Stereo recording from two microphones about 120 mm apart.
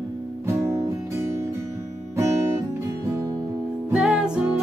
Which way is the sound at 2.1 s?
25° right (ahead or behind).